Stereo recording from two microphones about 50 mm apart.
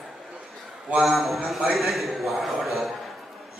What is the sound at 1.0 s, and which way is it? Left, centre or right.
A man's voice, centre.